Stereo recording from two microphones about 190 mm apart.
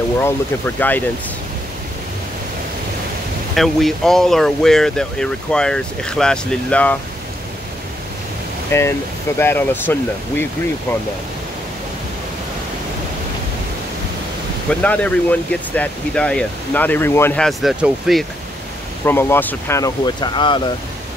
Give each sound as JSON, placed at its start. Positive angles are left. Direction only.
{"t": 0.2, "sound": "speech", "side_deg": 10}
{"t": 3.5, "sound": "speech", "side_deg": 0}
{"t": 8.7, "sound": "speech", "side_deg": 15}
{"t": 14.7, "sound": "speech", "side_deg": 5}
{"t": 19.0, "sound": "speech", "side_deg": 10}